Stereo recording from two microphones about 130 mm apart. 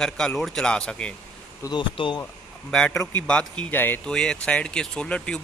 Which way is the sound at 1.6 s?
35° left (ahead or behind).